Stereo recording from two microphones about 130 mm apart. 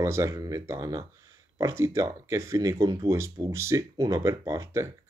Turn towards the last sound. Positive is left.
turn(degrees=-20)  # may be behind; listen again after turning